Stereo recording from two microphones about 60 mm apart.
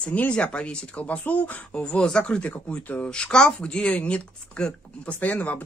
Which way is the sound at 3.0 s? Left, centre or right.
Centre.